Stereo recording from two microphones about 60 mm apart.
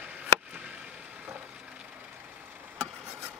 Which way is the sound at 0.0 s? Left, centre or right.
Right.